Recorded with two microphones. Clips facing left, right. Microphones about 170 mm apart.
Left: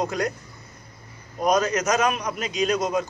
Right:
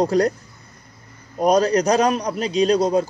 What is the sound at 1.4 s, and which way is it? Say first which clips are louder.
Speech: right 5 dB; 35° right (ahead or behind).